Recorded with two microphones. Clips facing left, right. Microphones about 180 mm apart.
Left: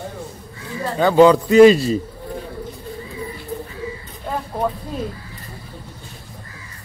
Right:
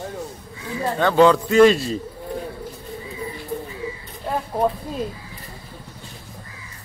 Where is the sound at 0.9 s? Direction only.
5° left (ahead or behind).